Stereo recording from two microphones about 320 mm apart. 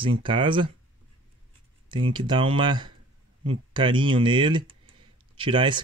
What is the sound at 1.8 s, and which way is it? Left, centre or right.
Speech, centre.